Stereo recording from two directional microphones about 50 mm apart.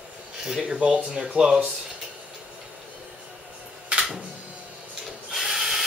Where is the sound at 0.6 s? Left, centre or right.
Right.